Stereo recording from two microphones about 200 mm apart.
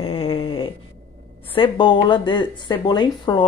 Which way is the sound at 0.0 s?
30° left (ahead or behind).